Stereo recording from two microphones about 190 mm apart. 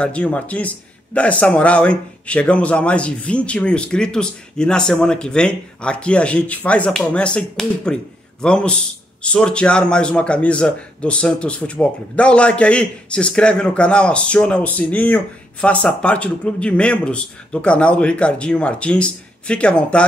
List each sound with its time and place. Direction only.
0.0 s a man's voice: 5° left (ahead or behind)